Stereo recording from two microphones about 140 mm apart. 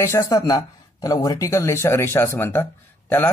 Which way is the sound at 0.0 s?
20° left (ahead or behind).